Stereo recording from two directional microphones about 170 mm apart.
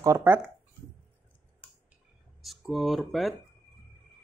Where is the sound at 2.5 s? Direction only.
Centre (ahead or behind).